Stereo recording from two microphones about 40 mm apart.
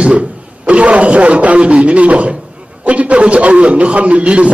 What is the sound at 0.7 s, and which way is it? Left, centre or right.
A man's voice, right.